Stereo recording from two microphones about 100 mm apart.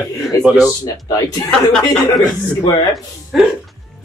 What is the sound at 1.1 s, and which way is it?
Speech, 35° left (ahead or behind).